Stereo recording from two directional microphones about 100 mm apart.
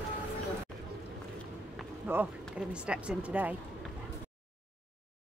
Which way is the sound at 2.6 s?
10° right (ahead or behind).